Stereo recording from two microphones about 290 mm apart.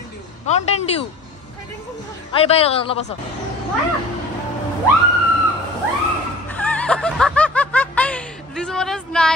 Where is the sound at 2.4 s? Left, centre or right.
Left.